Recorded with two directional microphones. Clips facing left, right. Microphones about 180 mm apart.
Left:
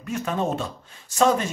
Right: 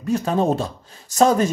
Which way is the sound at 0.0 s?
35° right (ahead or behind).